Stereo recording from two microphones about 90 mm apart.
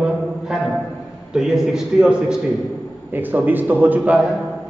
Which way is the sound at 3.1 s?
20° right (ahead or behind).